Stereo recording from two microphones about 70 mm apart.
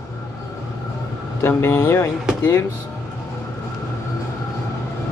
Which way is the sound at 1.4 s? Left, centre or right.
Left.